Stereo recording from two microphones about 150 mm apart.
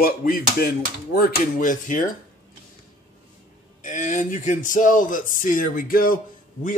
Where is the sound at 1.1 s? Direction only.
70° left (ahead or behind).